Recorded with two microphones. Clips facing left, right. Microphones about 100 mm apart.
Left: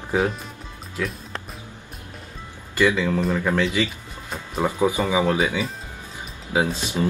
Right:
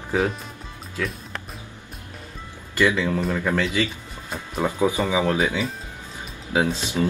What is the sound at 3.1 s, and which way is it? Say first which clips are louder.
Speech: left 1 dB; centre (ahead or behind).